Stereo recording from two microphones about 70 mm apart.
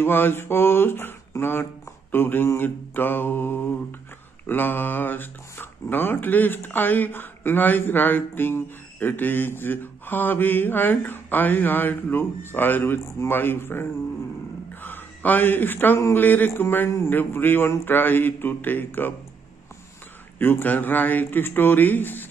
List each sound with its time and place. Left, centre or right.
0.0 s a man's voice: left
20.3 s speech: left